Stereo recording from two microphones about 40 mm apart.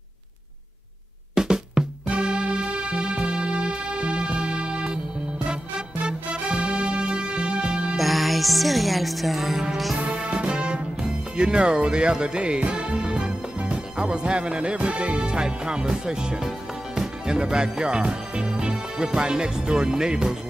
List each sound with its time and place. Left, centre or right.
1.3 s drum: centre
2.0 s music: right
7.9 s music: centre
10.3 s speech: right